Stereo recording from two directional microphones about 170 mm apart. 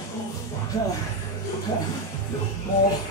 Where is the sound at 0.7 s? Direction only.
20° left (ahead or behind).